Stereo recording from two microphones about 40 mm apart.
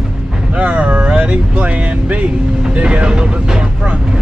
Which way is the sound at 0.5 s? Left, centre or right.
Right.